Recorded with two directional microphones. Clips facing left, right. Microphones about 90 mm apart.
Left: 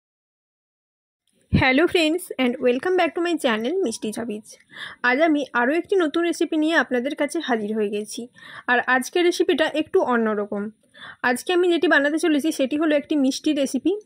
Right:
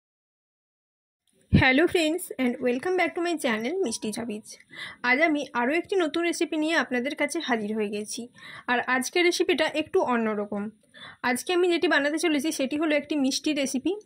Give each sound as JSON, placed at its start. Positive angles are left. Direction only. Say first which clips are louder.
{"t": 1.9, "sound": "speech", "louder": "left 4 dB", "side_deg": 90}
{"t": 11.0, "sound": "speech", "louder": "left 5 dB", "side_deg": 55}